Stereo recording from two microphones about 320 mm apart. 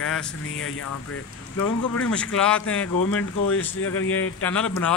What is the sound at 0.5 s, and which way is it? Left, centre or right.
Speech, left.